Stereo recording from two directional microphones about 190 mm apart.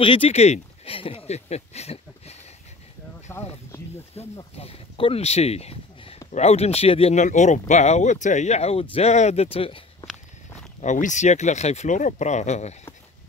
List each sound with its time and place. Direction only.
0.0 s speech: 30° left (ahead or behind)
3.3 s speech: 15° left (ahead or behind)
4.4 s speech: 30° left (ahead or behind)
10.8 s speech: 40° left (ahead or behind)